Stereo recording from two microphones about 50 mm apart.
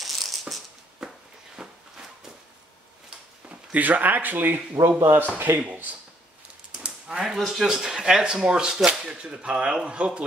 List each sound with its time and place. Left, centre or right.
0.0 s music: centre
1.0 s walk: centre
1.6 s a sound: centre
3.4 s speech: right
7.1 s speech: centre
7.3 s speech: centre; by 10.2 s right